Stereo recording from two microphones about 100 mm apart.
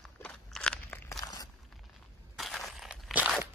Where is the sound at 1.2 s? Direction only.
40° left (ahead or behind).